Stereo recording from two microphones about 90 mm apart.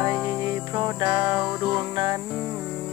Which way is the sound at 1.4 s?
5° right (ahead or behind).